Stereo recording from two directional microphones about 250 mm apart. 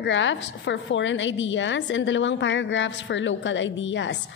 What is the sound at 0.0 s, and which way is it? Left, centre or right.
A woman's voice, left.